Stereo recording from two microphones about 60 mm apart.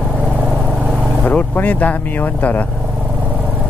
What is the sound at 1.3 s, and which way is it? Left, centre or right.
Speech, left.